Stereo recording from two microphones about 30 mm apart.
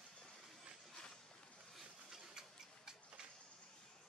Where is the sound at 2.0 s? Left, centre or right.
Centre.